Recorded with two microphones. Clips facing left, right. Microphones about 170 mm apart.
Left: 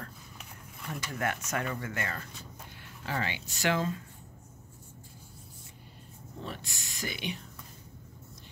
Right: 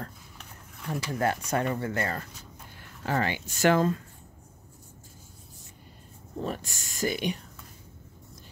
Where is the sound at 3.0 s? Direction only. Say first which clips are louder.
Right 6 dB; 50° right (ahead or behind).